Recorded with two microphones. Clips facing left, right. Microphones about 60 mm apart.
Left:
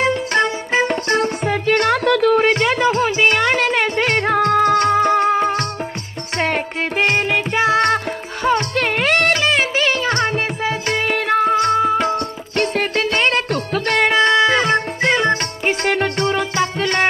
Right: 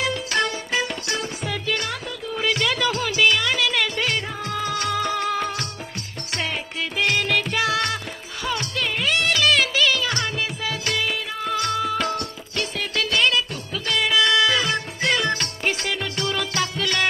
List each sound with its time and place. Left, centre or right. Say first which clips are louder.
0.0 s music: left 6 dB; left
1.1 s music: left 10 dB; left
2.4 s music: left 7 dB; left
3.3 s music: left 5 dB; left
6.3 s music: left 8 dB; left
7.2 s music: left 5 dB; left
8.5 s music: left 9 dB; left
9.4 s music: left 2 dB; left
11.4 s music: left 5 dB; left
12.5 s music: left 8 dB; left
13.5 s music: left 8 dB; left
15.8 s music: left 9 dB; left